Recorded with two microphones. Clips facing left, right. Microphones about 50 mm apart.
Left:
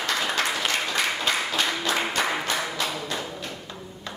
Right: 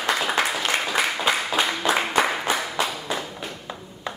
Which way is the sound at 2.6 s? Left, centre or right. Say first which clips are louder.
Right 2 dB; centre.